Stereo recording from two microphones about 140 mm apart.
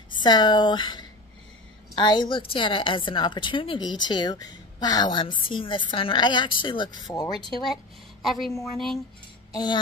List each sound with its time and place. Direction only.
0.2 s a woman's voice: 30° left (ahead or behind)
7.6 s speech: centre (ahead or behind)
8.7 s music: centre (ahead or behind)
9.5 s speech: 30° left (ahead or behind)